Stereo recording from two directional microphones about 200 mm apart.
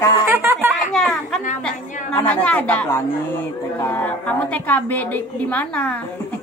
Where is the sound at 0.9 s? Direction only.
Centre (ahead or behind).